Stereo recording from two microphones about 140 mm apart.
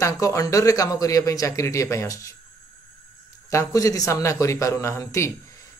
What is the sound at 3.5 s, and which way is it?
Speech, 25° left (ahead or behind).